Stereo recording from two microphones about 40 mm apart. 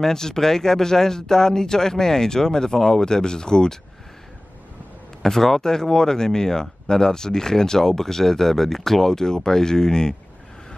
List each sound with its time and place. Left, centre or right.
0.0 s speech: centre
5.2 s speech: centre